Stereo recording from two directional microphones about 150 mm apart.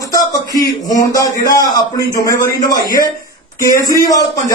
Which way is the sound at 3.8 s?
25° left (ahead or behind).